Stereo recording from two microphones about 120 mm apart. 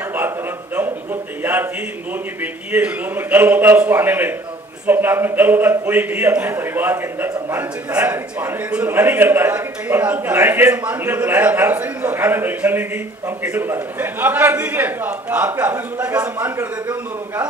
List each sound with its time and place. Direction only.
1.4 s a man's voice: 15° right (ahead or behind)